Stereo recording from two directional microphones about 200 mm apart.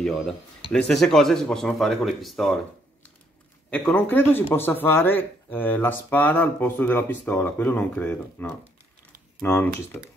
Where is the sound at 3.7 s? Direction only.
5° left (ahead or behind).